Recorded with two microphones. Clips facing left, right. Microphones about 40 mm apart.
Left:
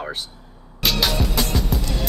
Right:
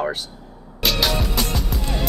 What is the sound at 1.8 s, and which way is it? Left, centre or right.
Music, right.